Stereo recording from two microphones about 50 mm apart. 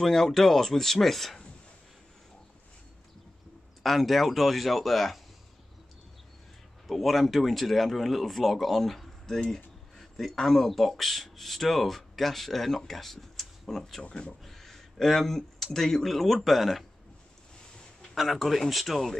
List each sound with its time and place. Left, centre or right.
0.0 s speech: centre
3.8 s speech: centre
6.9 s speech: centre
14.0 s speech: centre
14.4 s speech: centre
18.1 s speech: centre